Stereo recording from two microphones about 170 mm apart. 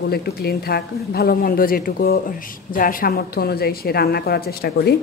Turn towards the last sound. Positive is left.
turn(degrees=65)  # may be behind; listen again after turning